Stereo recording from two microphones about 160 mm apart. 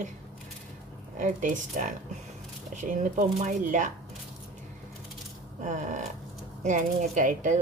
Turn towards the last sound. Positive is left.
turn(degrees=-50)  # may be behind; listen again after turning